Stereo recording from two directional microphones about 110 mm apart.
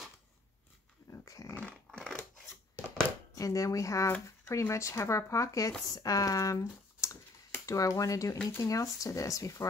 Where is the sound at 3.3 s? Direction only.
30° left (ahead or behind).